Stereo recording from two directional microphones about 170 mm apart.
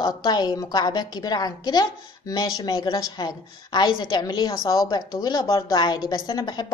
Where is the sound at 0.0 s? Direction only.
25° left (ahead or behind).